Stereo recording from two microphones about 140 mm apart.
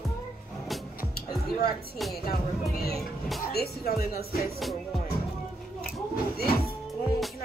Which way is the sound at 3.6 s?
90° left.